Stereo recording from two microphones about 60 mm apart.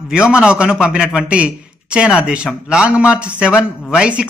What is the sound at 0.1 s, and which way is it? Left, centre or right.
A man's voice, centre.